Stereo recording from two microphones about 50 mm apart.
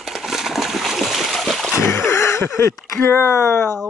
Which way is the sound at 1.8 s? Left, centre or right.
Left.